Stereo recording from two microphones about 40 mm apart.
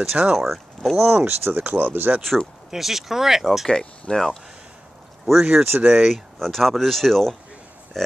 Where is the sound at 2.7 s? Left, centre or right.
Centre.